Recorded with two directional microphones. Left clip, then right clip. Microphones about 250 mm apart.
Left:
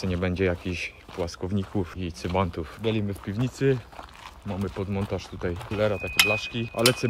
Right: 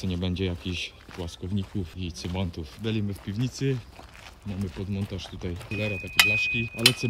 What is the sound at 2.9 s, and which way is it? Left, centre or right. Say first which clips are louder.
Speech: left 3 dB; left.